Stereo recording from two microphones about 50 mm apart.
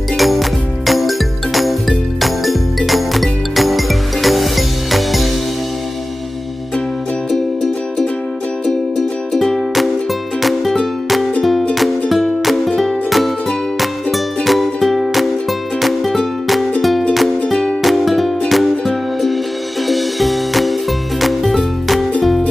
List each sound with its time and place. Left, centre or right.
0.2 s music: centre
9.3 s music: centre
17.5 s music: centre
17.8 s music: centre